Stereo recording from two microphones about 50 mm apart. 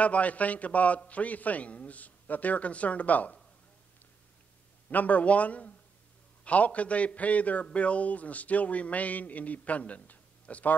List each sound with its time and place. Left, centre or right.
0.0 s a man's voice: left
4.9 s a man's voice: left